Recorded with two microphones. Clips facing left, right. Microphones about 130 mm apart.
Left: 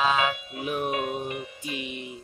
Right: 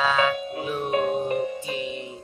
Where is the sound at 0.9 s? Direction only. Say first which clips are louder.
Right 6 dB; 35° right (ahead or behind).